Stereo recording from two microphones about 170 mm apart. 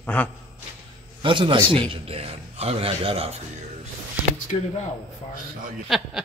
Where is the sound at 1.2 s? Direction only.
30° right (ahead or behind).